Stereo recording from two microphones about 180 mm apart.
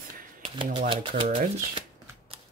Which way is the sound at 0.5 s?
30° right (ahead or behind).